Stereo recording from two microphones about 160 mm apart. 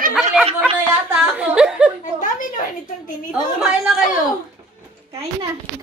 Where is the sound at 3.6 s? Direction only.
Centre (ahead or behind).